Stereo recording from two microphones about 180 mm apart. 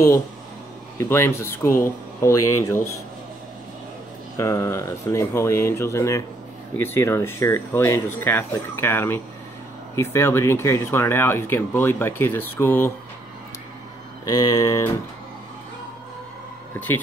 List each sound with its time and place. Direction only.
0.9 s speech: 15° left (ahead or behind)
4.4 s speech: 15° left (ahead or behind)
14.2 s a sound: 20° left (ahead or behind)